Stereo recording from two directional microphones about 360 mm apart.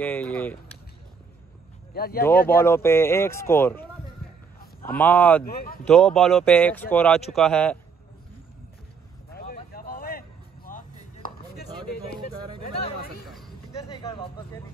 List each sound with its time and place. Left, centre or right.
0.0 s speech: centre
2.0 s speech: left
2.6 s speech: centre
4.9 s speech: centre
5.4 s speech: left
5.9 s speech: centre
9.5 s vehicle: left
12.2 s a sound: centre
12.6 s chatter: left
13.8 s a sound: centre